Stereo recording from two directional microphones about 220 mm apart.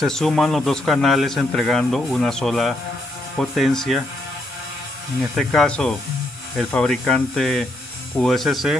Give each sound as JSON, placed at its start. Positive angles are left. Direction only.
{"t": 0.0, "sound": "speech", "side_deg": 0}
{"t": 5.3, "sound": "speech", "side_deg": 0}